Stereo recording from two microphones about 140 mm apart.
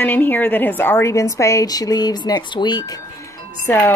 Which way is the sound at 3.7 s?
15° left (ahead or behind).